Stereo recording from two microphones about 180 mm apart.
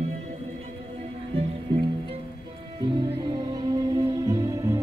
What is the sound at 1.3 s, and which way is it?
Music, 30° right (ahead or behind).